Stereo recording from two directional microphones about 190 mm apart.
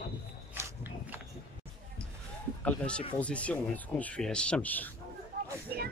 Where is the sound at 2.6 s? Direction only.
5° left (ahead or behind).